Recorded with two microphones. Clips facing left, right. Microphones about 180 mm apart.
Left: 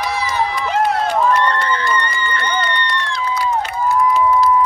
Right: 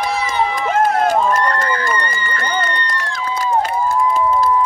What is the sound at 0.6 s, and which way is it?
Run, 50° right (ahead or behind).